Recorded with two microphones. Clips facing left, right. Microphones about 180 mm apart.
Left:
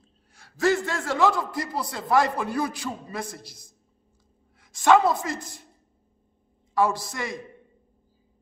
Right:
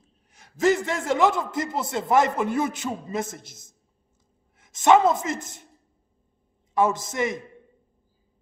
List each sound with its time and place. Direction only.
0.3 s a man's voice: 20° right (ahead or behind)
6.7 s a man's voice: 20° right (ahead or behind)